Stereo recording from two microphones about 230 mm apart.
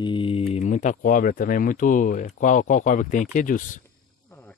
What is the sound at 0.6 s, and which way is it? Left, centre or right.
Speech, left.